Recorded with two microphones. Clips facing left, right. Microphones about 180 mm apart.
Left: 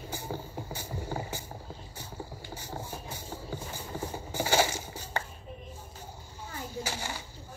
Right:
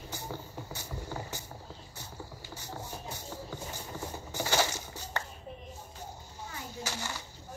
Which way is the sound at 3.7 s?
10° left (ahead or behind).